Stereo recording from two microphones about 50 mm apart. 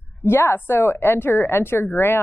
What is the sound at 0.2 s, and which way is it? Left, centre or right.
Speech, left.